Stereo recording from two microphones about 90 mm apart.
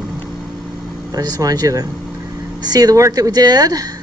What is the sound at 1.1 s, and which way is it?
Speech, 45° right (ahead or behind).